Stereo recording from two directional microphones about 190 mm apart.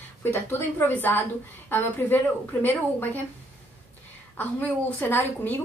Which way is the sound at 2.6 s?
10° left (ahead or behind).